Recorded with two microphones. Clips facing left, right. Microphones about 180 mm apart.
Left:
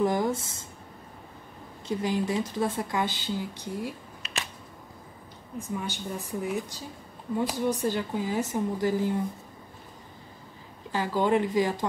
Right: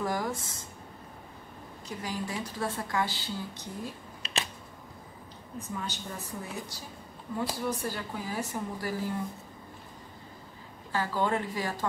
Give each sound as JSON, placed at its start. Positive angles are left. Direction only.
{"t": 0.0, "sound": "a woman's voice", "side_deg": 20}
{"t": 1.9, "sound": "a woman's voice", "side_deg": 25}
{"t": 5.6, "sound": "a woman's voice", "side_deg": 15}
{"t": 10.9, "sound": "a woman's voice", "side_deg": 15}